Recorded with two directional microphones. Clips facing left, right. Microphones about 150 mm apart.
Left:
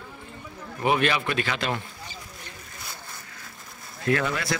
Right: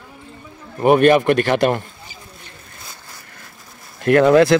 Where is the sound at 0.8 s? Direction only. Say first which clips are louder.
Right 11 dB; 50° right (ahead or behind).